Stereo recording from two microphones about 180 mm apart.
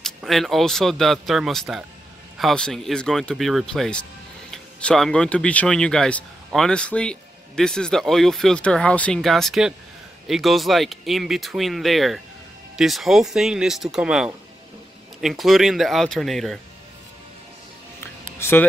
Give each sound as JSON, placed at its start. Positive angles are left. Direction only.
{"t": 0.0, "sound": "speech", "side_deg": 0}
{"t": 18.4, "sound": "speech", "side_deg": 10}